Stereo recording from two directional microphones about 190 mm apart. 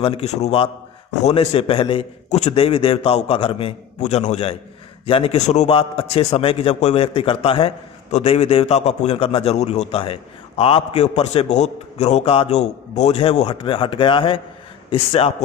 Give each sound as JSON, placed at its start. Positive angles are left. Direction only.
{"t": 0.0, "sound": "a man's voice", "side_deg": 30}